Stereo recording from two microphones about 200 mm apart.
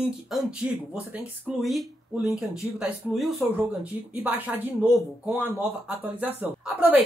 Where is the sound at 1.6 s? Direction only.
Centre (ahead or behind).